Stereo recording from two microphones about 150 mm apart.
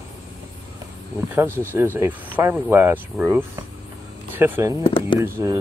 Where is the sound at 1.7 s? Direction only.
15° right (ahead or behind).